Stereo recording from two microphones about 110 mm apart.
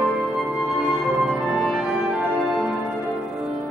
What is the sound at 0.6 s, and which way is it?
Music, 5° right (ahead or behind).